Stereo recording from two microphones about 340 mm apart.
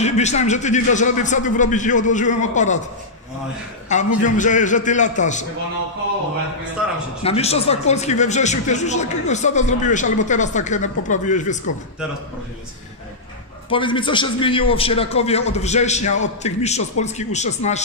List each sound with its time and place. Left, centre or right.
0.0 s speech: centre
3.9 s speech: left
6.8 s a man's voice: centre
7.2 s speech: centre
13.7 s speech: centre